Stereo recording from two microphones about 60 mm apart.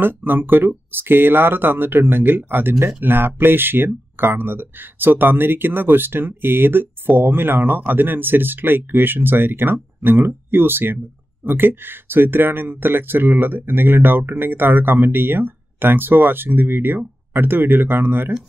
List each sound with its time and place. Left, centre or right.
0.0 s speech: right